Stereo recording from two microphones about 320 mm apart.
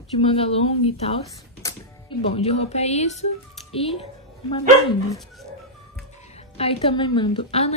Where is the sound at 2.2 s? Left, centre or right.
Centre.